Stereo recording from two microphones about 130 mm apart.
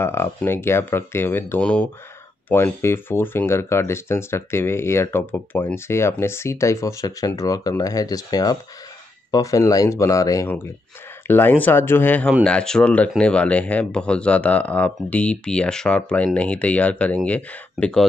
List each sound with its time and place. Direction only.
0.0 s speech: 20° left (ahead or behind)